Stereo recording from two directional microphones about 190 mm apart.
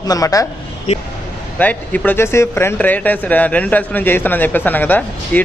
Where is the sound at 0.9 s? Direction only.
35° left (ahead or behind).